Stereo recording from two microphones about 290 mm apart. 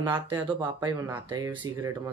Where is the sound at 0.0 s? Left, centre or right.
Centre.